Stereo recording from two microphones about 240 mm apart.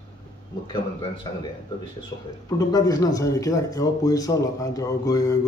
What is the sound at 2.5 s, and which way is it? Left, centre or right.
Speech, centre.